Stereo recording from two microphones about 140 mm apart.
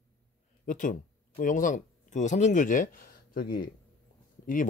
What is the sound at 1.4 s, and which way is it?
Speech, 65° left (ahead or behind).